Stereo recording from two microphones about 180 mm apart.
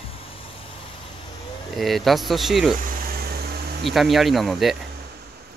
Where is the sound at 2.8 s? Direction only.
50° right (ahead or behind).